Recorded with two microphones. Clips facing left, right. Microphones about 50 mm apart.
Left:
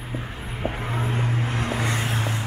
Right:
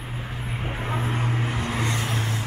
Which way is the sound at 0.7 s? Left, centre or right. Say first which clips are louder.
Left 2 dB; centre.